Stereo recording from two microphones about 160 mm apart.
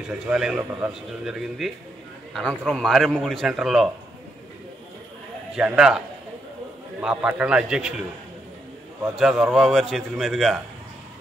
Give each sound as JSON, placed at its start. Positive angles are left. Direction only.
{"t": 0.1, "sound": "a man's voice", "side_deg": -5}
{"t": 5.6, "sound": "a man's voice", "side_deg": -5}
{"t": 9.2, "sound": "a man's voice", "side_deg": -5}